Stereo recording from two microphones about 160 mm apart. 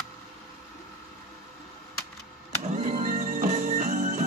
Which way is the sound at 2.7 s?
45° right (ahead or behind).